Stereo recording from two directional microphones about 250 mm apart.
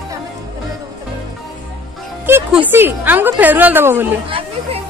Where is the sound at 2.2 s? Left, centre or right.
Centre.